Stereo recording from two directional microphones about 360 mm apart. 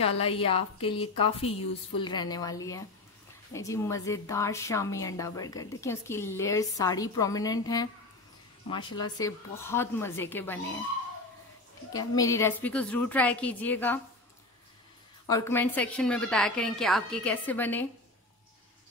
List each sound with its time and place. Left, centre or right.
0.0 s a woman's voice: centre
11.9 s a woman's voice: centre
15.2 s a woman's voice: centre